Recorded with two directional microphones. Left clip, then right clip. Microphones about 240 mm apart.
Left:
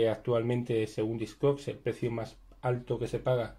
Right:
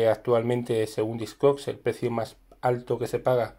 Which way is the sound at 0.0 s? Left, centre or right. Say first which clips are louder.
Right 6 dB; right.